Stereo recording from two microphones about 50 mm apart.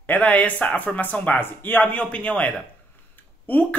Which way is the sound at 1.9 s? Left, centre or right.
Left.